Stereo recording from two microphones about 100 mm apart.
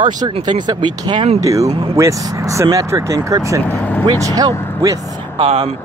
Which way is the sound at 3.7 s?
20° left (ahead or behind).